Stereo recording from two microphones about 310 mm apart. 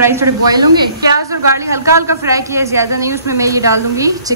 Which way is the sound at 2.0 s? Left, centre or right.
Centre.